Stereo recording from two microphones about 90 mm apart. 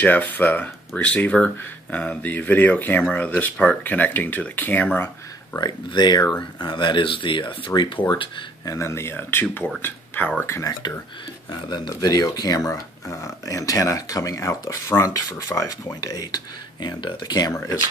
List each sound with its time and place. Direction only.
0.0 s speech: 20° left (ahead or behind)
4.9 s a sound: 20° left (ahead or behind)
5.6 s speech: 55° left (ahead or behind)
8.6 s speech: 35° left (ahead or behind)
11.9 s speech: 45° left (ahead or behind)